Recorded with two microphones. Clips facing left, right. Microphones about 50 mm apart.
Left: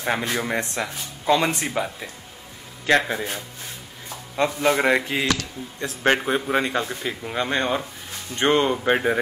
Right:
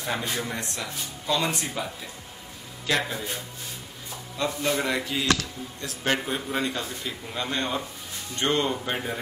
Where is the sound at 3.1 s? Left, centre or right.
Left.